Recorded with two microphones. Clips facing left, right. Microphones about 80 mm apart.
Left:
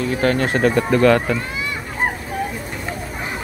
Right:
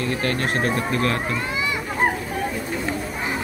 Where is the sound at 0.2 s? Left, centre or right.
Left.